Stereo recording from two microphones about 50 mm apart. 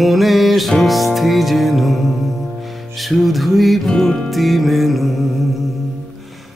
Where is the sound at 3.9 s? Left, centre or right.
Centre.